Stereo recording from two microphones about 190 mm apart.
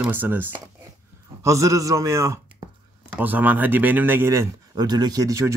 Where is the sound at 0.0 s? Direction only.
10° right (ahead or behind).